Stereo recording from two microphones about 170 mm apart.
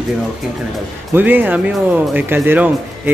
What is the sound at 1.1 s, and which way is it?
Speech, 10° right (ahead or behind).